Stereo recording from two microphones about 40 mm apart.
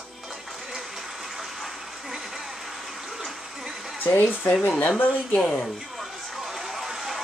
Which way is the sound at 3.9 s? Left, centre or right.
Left.